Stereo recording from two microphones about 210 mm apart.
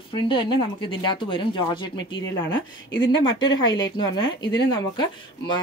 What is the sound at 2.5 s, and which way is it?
Speech, 60° left (ahead or behind).